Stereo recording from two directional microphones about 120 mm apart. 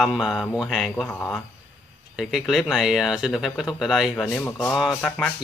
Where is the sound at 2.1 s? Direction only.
Centre (ahead or behind).